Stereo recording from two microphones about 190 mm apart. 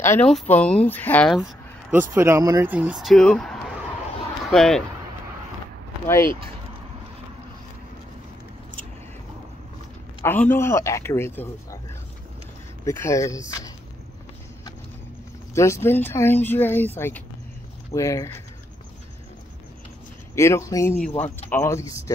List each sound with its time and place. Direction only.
0.0 s speech: 15° left (ahead or behind)
1.9 s speech: 10° right (ahead or behind)
6.0 s speech: 15° left (ahead or behind)
10.2 s speech: 10° left (ahead or behind)
12.8 s speech: 15° left (ahead or behind)
15.5 s speech: 15° left (ahead or behind)
20.3 s speech: 15° left (ahead or behind)